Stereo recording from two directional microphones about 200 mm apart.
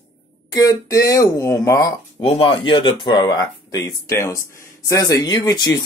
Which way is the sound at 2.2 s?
25° left (ahead or behind).